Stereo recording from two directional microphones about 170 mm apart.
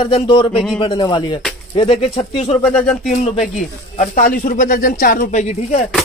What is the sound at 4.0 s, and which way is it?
Speech, 55° left (ahead or behind).